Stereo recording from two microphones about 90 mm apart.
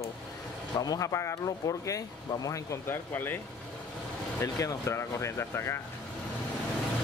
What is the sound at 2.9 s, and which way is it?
Speech, 20° left (ahead or behind).